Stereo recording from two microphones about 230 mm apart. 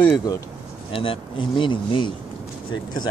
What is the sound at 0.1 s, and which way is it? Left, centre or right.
Speech, centre.